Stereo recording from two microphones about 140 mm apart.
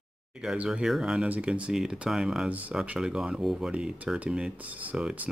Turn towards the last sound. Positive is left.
turn(degrees=-5)  # may be behind; listen again after turning